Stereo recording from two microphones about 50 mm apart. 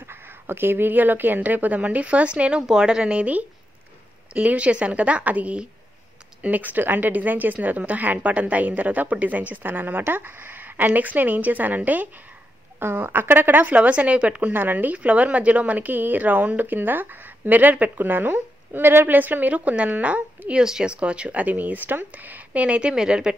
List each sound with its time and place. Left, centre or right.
0.1 s speech: right
2.6 s a woman's voice: centre; by 12.1 s right
12.7 s speech: right
14.5 s speech: right
19.1 s speech: right
20.6 s a woman's voice: centre
20.9 s a woman's voice: right